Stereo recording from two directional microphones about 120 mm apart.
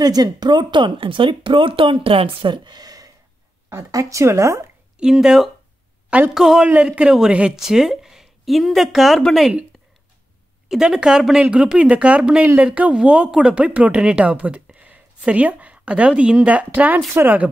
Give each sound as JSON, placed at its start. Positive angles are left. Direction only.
{"t": 0.0, "sound": "a woman's voice", "side_deg": -35}
{"t": 4.9, "sound": "a woman's voice", "side_deg": -5}
{"t": 10.7, "sound": "a woman's voice", "side_deg": -5}